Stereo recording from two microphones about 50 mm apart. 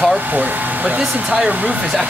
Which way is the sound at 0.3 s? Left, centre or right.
Right.